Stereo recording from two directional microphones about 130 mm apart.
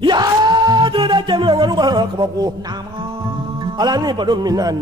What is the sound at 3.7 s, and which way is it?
A man's voice, 30° right (ahead or behind).